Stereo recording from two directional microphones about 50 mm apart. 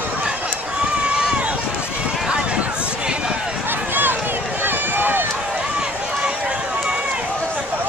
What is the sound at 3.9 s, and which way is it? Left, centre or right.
Run, right.